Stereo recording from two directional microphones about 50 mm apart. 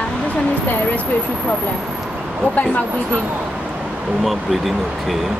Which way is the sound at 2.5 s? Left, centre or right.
Left.